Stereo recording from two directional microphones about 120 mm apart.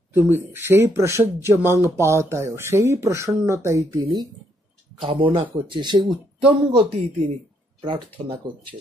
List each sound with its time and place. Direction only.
0.3 s speech: 15° right (ahead or behind)
5.0 s speech: 45° right (ahead or behind)
6.8 s speech: 65° right (ahead or behind)
7.8 s speech: 45° right (ahead or behind)